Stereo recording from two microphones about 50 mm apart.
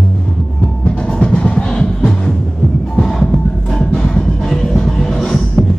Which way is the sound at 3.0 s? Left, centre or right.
Centre.